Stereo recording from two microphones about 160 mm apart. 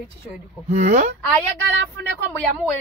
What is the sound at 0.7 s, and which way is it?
Speech, 45° right (ahead or behind).